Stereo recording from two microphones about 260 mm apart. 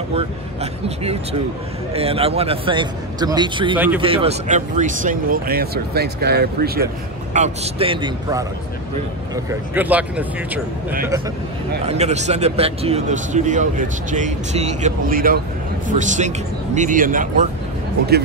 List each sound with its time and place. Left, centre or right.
0.1 s a man's voice: right
3.7 s speech: centre
4.0 s speech: right
7.3 s a man's voice: right; by 10.6 s centre
11.8 s a man's voice: right